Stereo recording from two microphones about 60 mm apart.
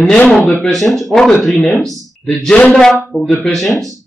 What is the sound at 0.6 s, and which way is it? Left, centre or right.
Speech, centre.